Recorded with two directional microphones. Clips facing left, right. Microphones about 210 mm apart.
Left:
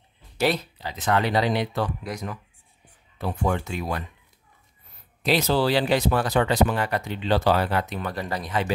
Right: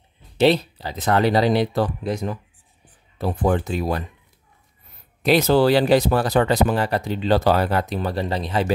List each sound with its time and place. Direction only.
0.7 s speech: 35° right (ahead or behind)
5.2 s speech: 50° right (ahead or behind); by 8.6 s 30° right (ahead or behind)